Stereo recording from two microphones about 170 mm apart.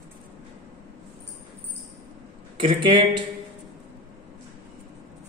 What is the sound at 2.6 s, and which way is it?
Speech, 30° right (ahead or behind).